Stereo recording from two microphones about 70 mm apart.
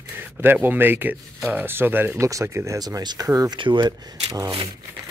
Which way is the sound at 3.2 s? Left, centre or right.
Right.